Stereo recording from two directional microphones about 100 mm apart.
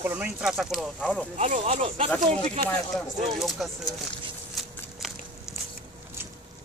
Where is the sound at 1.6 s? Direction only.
85° right.